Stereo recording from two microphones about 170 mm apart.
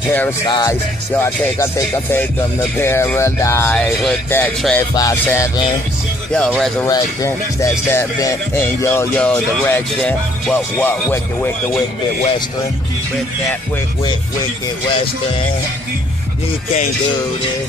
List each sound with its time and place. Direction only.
0.5 s music: 25° left (ahead or behind)
1.1 s speech: 15° left (ahead or behind)
6.8 s speech: 20° left (ahead or behind)